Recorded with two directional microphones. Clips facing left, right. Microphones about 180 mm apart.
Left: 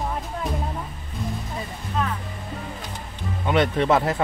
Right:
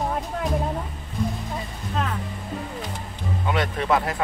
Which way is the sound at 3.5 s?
25° left (ahead or behind).